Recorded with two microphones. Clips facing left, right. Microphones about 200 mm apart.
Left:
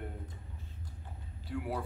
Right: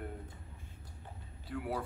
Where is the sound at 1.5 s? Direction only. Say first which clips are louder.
Left 1 dB; centre (ahead or behind).